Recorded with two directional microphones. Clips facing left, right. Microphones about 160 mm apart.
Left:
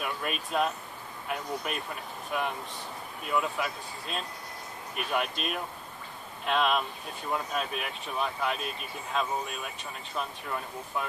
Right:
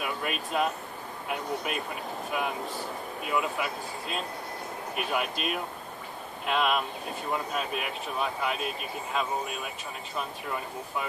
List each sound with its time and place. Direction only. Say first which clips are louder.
0.0 s speech: right 1 dB; centre (ahead or behind)